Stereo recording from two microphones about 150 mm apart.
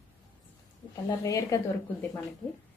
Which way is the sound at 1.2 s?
25° left (ahead or behind).